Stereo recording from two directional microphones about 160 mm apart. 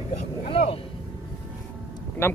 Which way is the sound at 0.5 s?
35° left (ahead or behind).